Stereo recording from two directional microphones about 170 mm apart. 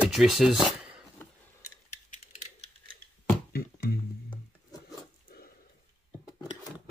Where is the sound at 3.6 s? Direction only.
65° left (ahead or behind).